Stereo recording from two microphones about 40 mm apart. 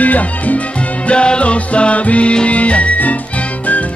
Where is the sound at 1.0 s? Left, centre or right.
Left.